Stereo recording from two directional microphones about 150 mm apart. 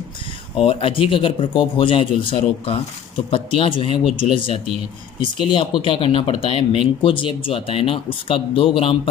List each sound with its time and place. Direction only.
0.6 s speech: 40° left (ahead or behind)